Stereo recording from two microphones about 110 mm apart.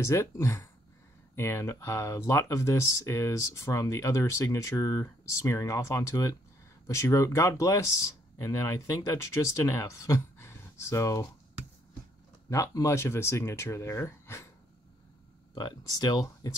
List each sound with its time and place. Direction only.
0.0 s speech: 25° left (ahead or behind)
12.4 s speech: 30° left (ahead or behind)
15.5 s speech: 40° left (ahead or behind)